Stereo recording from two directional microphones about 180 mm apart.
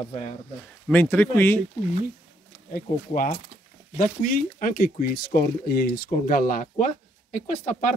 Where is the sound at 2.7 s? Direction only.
50° left (ahead or behind).